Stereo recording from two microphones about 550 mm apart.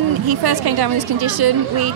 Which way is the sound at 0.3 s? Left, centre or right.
Right.